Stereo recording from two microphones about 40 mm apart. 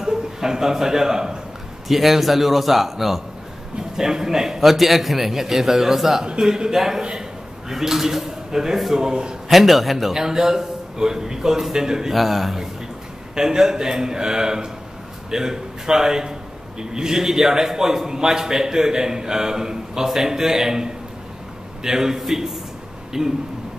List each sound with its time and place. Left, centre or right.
0.0 s a man's voice: centre
7.0 s a man's voice: centre
7.7 s a man's voice: centre
9.0 s a man's voice: right
9.5 s a man's voice: centre
10.1 s a man's voice: centre
12.2 s a man's voice: centre
13.3 s a man's voice: centre